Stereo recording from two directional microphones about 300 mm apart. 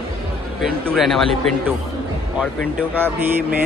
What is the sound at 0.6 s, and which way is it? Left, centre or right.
Speech, centre.